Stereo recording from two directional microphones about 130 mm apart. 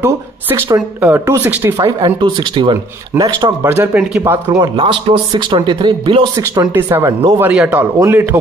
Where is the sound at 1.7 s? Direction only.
30° right (ahead or behind).